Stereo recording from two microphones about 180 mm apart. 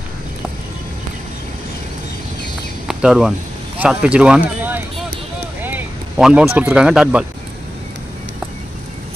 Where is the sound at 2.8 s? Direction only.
5° right (ahead or behind).